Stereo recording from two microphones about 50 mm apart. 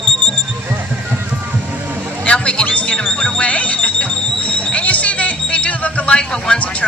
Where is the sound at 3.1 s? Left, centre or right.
Left.